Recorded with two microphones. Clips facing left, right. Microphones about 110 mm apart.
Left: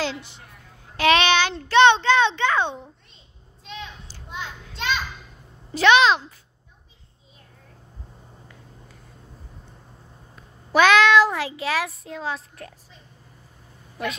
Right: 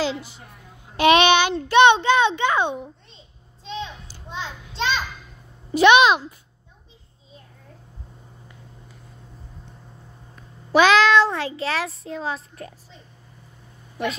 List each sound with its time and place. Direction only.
0.0 s a woman's voice: 5° right (ahead or behind)
0.9 s a child's voice: 15° right (ahead or behind)
3.6 s a sound: 30° right (ahead or behind)
4.3 s children playing: 25° right (ahead or behind)
5.7 s a child's voice: 15° right (ahead or behind)
10.7 s speech: centre (ahead or behind)